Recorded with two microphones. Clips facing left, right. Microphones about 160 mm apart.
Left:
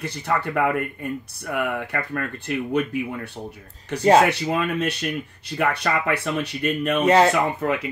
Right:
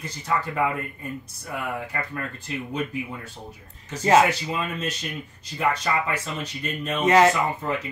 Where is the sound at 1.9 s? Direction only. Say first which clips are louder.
Left 4 dB; 65° left (ahead or behind).